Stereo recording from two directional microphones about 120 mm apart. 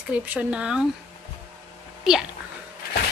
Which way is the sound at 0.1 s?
10° right (ahead or behind).